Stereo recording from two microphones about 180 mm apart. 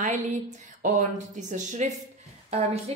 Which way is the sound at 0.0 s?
45° right (ahead or behind).